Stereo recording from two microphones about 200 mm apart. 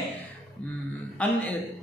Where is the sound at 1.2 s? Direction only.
5° left (ahead or behind).